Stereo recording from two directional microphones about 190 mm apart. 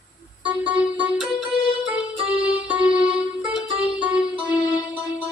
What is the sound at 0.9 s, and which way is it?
Music, 10° right (ahead or behind).